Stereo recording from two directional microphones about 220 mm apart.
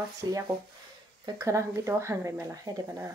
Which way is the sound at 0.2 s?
15° right (ahead or behind).